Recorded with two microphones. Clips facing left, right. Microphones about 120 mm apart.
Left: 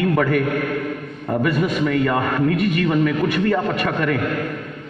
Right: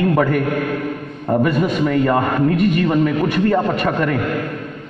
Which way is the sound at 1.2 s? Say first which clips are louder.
Right 3 dB; 25° right (ahead or behind).